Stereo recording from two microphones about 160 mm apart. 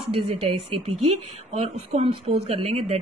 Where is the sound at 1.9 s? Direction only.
40° right (ahead or behind).